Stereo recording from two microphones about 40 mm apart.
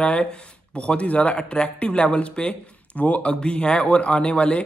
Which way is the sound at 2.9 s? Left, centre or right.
Left.